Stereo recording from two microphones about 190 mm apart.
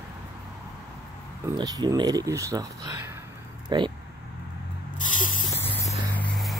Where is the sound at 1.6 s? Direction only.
20° right (ahead or behind).